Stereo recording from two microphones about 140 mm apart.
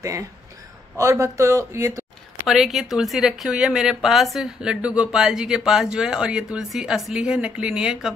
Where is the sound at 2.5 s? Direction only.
Centre (ahead or behind).